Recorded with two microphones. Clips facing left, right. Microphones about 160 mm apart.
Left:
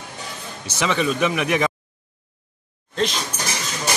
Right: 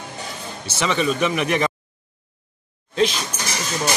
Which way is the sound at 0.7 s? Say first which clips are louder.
Even; 5° left (ahead or behind).